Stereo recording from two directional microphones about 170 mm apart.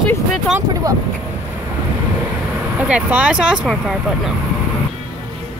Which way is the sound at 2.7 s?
10° right (ahead or behind).